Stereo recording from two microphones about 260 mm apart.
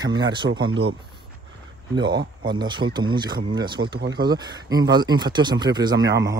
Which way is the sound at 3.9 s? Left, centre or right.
Right.